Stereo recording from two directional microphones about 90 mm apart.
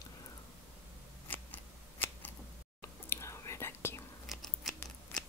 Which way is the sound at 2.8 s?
30° left (ahead or behind).